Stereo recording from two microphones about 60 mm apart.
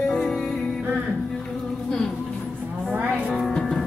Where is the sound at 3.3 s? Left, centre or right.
Centre.